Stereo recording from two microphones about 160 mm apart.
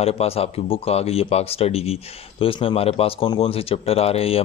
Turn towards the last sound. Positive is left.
turn(degrees=40)  # may be behind; listen again after turning